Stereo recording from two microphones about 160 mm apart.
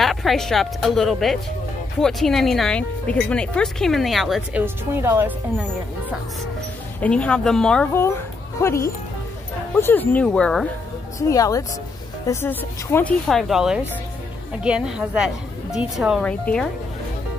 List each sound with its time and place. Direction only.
0.0 s speech: centre (ahead or behind)
7.0 s speech: 5° left (ahead or behind)
11.1 s speech: 20° left (ahead or behind)
13.3 s speech: centre (ahead or behind)